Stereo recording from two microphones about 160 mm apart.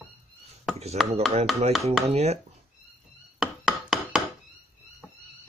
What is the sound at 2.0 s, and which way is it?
Speech, 40° right (ahead or behind).